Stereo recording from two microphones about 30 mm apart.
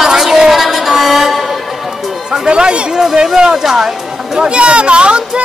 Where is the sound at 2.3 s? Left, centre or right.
Right.